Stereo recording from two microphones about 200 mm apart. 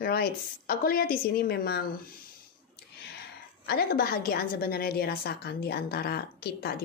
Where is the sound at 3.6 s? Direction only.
50° left (ahead or behind).